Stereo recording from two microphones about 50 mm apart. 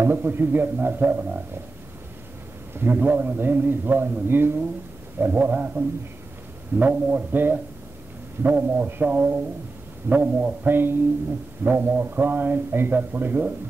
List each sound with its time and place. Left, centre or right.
0.0 s a man's voice: right
2.7 s a man's voice: right